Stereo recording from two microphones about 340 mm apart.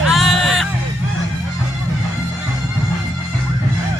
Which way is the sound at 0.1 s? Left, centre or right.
Centre.